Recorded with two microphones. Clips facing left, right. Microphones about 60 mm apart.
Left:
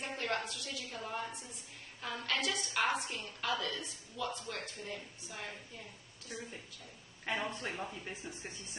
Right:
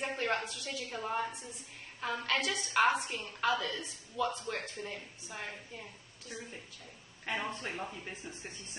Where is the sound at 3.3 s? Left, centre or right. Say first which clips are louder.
Right 6 dB; right.